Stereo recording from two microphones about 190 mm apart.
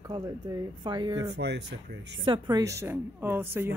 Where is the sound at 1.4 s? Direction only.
60° right (ahead or behind).